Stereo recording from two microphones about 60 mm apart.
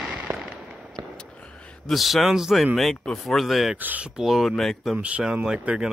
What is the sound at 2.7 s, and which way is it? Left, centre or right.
A man's voice, centre.